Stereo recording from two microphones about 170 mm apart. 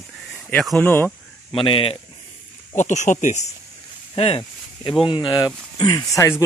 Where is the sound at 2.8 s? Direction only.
45° left (ahead or behind).